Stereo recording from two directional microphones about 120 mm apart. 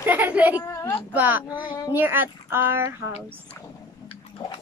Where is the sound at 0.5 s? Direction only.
30° left (ahead or behind).